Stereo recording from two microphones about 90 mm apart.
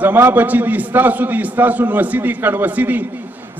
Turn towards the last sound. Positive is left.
turn(degrees=-20)  # may be behind; listen again after turning